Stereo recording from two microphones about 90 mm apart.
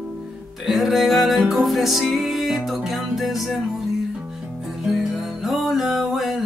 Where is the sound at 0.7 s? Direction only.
Centre (ahead or behind).